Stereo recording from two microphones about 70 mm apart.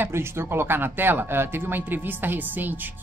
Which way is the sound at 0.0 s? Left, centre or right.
Right.